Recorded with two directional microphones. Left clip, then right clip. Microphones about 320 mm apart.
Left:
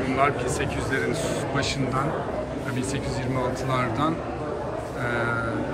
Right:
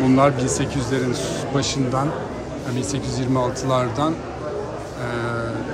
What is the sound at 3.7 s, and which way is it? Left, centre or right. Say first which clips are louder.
Speech: right 4 dB; centre.